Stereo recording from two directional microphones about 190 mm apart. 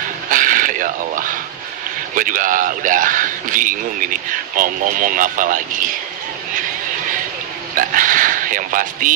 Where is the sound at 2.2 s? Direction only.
45° right (ahead or behind).